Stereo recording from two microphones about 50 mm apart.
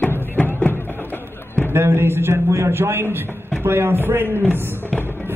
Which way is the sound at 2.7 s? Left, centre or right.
Right.